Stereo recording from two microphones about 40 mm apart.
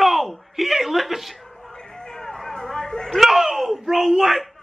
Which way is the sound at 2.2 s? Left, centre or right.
Centre.